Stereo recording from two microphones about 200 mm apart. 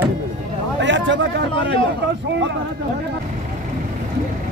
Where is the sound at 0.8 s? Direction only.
65° right (ahead or behind).